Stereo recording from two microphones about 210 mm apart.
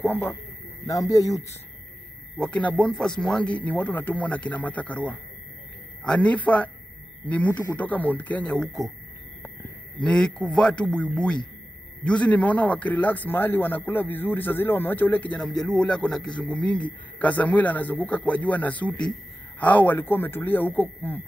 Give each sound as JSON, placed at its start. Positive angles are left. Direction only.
{"t": 0.0, "sound": "a man's voice", "side_deg": 10}
{"t": 2.3, "sound": "a man's voice", "side_deg": 5}
{"t": 10.0, "sound": "a man's voice", "side_deg": 5}